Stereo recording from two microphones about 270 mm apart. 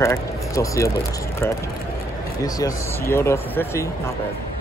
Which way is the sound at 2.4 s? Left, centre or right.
Centre.